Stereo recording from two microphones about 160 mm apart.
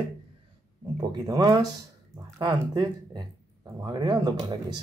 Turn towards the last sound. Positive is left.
turn(degrees=-25)  # may be behind; listen again after turning